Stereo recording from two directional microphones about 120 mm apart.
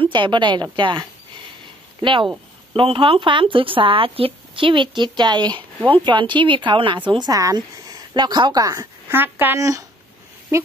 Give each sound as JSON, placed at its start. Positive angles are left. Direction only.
{"t": 0.0, "sound": "speech", "side_deg": -45}
{"t": 9.1, "sound": "speech", "side_deg": -15}
{"t": 9.6, "sound": "speech", "side_deg": -30}